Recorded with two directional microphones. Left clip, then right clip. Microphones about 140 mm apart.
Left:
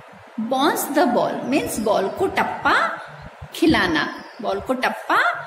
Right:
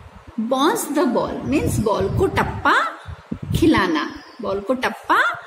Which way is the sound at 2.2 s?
45° right (ahead or behind).